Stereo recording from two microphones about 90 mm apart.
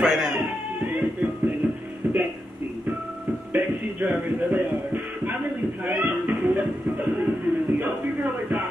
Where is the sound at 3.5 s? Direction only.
20° right (ahead or behind).